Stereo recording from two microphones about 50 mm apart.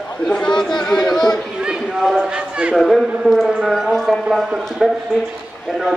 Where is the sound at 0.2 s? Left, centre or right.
Centre.